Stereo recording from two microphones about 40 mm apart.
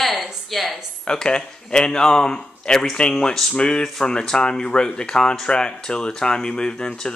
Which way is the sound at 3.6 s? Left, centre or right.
Left.